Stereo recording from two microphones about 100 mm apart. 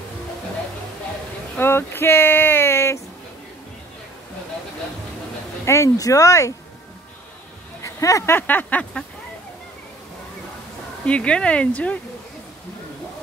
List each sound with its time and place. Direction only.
1.6 s a sound: 25° left (ahead or behind)
5.7 s speech: 35° left (ahead or behind)
7.8 s speech: 35° left (ahead or behind)
8.4 s speech: 15° left (ahead or behind)
11.1 s speech: 10° left (ahead or behind)